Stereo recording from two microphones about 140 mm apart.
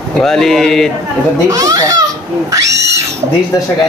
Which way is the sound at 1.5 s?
25° right (ahead or behind).